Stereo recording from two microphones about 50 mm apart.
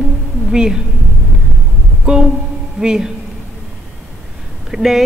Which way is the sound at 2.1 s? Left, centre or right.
Centre.